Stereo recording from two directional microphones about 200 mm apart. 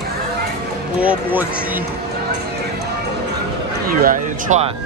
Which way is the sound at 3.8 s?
45° right (ahead or behind).